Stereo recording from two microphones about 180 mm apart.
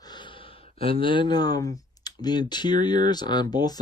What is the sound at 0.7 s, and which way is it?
Speech, 30° left (ahead or behind).